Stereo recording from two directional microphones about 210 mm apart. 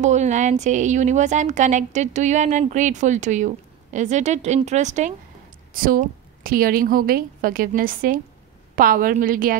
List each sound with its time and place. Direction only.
0.0 s a woman's voice: 35° right (ahead or behind)